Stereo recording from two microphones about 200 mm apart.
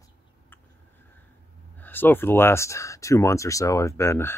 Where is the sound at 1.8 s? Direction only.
10° left (ahead or behind).